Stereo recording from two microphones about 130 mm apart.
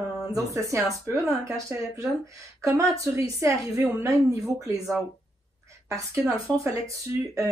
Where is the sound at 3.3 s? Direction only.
20° right (ahead or behind).